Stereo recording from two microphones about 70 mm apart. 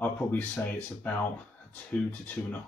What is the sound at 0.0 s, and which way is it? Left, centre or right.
Speech, centre.